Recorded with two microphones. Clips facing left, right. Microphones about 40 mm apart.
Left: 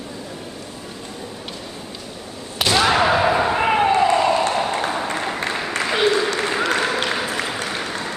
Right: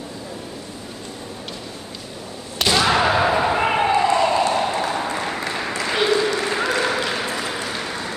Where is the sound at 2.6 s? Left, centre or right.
Centre.